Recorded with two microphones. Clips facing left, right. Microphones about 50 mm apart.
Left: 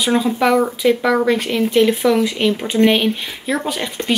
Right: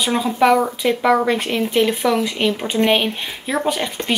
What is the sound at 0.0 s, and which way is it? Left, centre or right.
Speech, centre.